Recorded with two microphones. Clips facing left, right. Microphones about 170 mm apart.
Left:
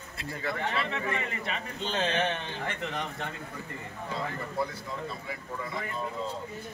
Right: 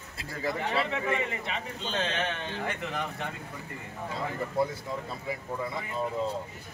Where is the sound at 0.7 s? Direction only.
15° right (ahead or behind).